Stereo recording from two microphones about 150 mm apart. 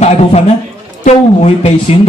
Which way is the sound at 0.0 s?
45° left (ahead or behind).